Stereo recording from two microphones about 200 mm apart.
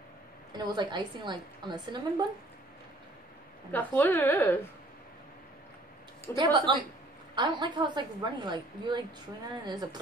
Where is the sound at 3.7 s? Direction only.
10° left (ahead or behind).